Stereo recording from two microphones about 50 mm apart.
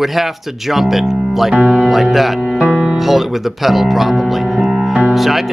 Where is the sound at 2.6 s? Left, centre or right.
Centre.